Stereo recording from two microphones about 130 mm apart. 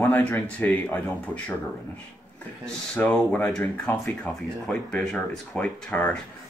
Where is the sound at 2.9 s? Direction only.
10° left (ahead or behind).